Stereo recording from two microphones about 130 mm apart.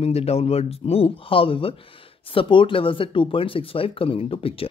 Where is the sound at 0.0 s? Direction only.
50° left (ahead or behind).